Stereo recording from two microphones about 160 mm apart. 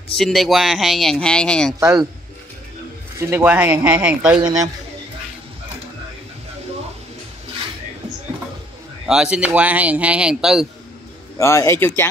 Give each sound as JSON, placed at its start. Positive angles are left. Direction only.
{"t": 0.2, "sound": "speech", "side_deg": 0}
{"t": 1.8, "sound": "speech", "side_deg": -20}
{"t": 3.2, "sound": "speech", "side_deg": -15}
{"t": 9.0, "sound": "speech", "side_deg": -5}
{"t": 11.3, "sound": "a man's voice", "side_deg": 15}